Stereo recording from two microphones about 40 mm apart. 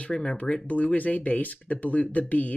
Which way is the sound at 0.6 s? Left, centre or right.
Left.